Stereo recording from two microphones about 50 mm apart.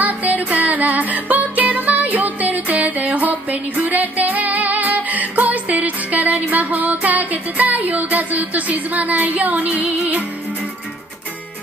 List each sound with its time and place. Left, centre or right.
0.0 s music: right